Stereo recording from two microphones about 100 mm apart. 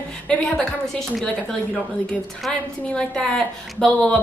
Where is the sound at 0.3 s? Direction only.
5° left (ahead or behind).